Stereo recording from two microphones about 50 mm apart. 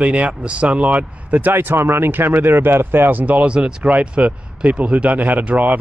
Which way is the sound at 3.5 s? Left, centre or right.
Right.